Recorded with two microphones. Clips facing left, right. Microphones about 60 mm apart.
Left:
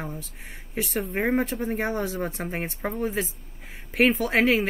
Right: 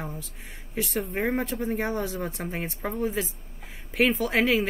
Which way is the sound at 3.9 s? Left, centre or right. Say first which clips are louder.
Left 2 dB; centre.